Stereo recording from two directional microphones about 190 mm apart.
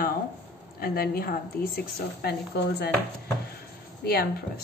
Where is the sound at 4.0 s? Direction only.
55° left (ahead or behind).